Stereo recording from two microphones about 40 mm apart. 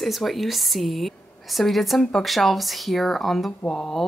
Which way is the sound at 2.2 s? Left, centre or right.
Centre.